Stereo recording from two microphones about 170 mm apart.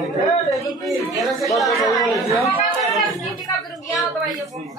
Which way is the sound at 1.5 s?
Centre (ahead or behind).